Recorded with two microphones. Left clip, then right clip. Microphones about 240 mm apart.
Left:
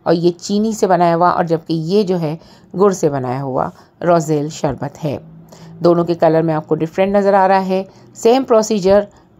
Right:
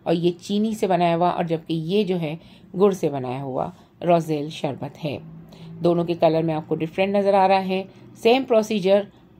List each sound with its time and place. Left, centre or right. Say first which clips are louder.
0.0 s speech: left 7 dB; left
4.9 s a woman's voice: left 7 dB; left
5.8 s speech: left 7 dB; left